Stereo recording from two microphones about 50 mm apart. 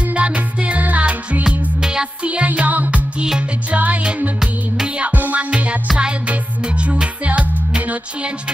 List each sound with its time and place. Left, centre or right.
0.0 s music: right
1.8 s music: centre
2.2 s music: right
5.1 s music: right